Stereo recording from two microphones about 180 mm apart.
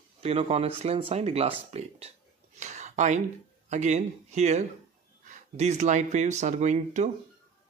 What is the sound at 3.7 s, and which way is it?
Speech, 40° right (ahead or behind).